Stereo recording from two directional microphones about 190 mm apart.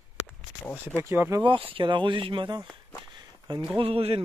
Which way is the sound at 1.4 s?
25° right (ahead or behind).